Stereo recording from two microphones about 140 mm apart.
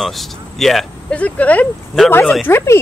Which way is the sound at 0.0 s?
Centre (ahead or behind).